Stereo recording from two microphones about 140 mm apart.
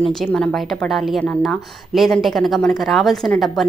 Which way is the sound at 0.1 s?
5° left (ahead or behind).